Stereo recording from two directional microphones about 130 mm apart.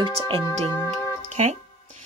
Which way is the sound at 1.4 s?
60° right (ahead or behind).